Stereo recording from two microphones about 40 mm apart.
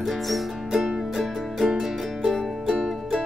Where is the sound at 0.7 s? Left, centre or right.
Centre.